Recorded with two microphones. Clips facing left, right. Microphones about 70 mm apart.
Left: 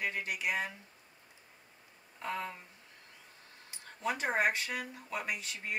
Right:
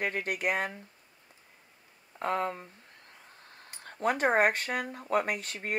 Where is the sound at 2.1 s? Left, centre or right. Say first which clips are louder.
Right 8 dB; right.